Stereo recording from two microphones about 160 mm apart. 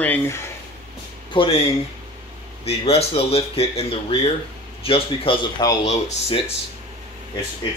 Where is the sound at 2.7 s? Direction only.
40° left (ahead or behind).